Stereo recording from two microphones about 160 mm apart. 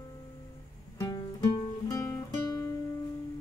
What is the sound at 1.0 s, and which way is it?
Music, 20° left (ahead or behind).